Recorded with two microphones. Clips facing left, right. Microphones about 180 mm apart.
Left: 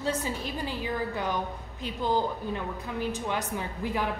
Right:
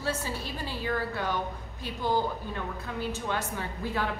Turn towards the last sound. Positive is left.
turn(degrees=15)  # may be behind; listen again after turning